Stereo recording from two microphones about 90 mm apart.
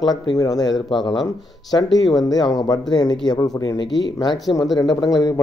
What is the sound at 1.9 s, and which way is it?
Speech, 45° left (ahead or behind).